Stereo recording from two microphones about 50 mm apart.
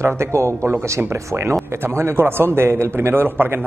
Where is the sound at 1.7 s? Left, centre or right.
Right.